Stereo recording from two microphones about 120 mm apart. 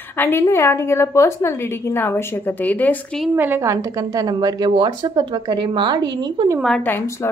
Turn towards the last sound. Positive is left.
turn(degrees=25)  # may be behind; listen again after turning